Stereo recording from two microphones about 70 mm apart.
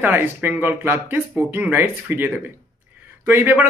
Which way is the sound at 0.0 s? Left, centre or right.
Right.